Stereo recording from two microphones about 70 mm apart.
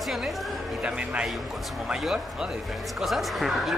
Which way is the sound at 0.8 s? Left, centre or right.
Centre.